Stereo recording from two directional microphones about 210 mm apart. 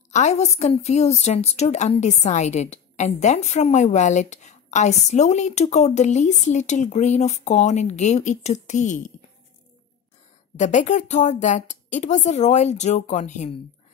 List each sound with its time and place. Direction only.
0.1 s a woman's voice: 30° left (ahead or behind)
10.6 s a woman's voice: 35° left (ahead or behind)